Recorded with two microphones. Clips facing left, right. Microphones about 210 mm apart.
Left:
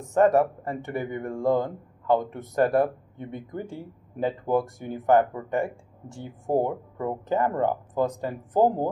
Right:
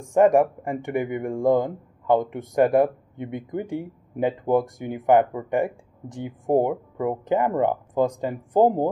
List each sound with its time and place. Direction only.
0.1 s speech: 15° right (ahead or behind)
8.5 s speech: 25° right (ahead or behind)